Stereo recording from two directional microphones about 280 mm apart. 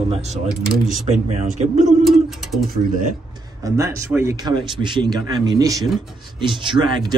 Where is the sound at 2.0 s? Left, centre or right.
Centre.